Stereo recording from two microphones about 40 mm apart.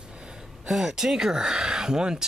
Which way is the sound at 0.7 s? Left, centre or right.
Centre.